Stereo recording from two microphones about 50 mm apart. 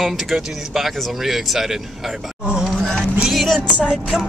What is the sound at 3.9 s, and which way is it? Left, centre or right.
Music, centre.